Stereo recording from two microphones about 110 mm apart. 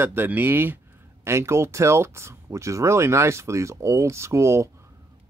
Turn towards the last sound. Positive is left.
turn(degrees=-25)  # may be behind; listen again after turning